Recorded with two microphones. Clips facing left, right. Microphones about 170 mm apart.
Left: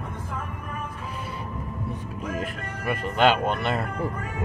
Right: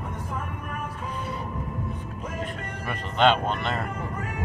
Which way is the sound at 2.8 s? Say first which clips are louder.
Left 1 dB; 5° left (ahead or behind).